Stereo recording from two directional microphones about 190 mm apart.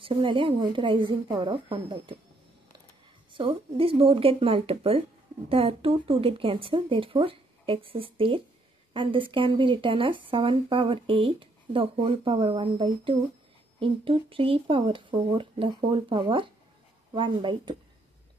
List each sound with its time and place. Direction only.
0.0 s speech: 25° right (ahead or behind)
3.3 s speech: 30° right (ahead or behind)